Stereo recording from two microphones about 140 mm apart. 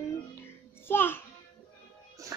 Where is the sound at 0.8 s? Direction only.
15° left (ahead or behind).